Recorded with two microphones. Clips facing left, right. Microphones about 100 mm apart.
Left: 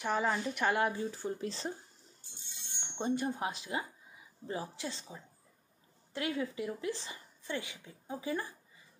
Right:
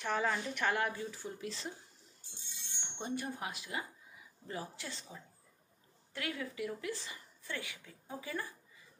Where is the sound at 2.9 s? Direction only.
25° left (ahead or behind).